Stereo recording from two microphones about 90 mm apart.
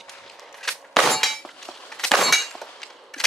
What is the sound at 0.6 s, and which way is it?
Clang, centre (ahead or behind).